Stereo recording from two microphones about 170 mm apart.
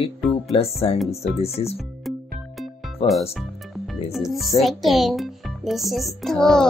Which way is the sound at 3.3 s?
Centre (ahead or behind).